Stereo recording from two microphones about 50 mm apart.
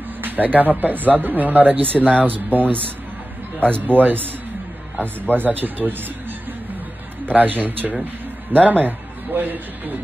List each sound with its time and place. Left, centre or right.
0.2 s speech: right
5.3 s speech: right
7.2 s speech: right